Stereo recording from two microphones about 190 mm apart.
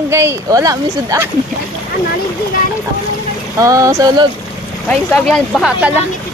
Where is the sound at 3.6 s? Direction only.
15° right (ahead or behind).